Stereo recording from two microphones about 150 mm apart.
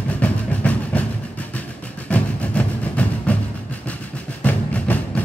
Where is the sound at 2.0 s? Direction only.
10° left (ahead or behind).